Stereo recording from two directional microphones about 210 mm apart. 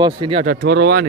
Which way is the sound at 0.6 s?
55° right (ahead or behind).